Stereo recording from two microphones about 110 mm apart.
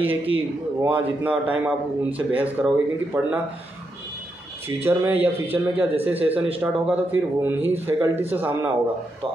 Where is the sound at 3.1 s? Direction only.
35° right (ahead or behind).